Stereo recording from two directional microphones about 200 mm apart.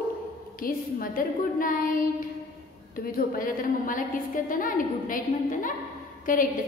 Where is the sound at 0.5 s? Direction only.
45° left (ahead or behind).